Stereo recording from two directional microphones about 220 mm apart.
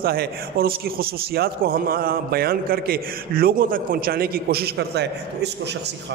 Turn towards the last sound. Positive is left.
turn(degrees=-50)  # may be behind; listen again after turning